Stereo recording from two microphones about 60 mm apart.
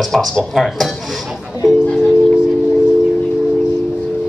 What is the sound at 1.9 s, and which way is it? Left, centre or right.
Music, centre.